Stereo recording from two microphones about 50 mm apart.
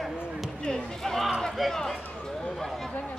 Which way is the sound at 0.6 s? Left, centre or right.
Centre.